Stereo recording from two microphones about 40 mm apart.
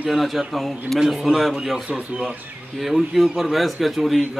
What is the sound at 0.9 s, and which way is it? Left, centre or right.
Speech, centre.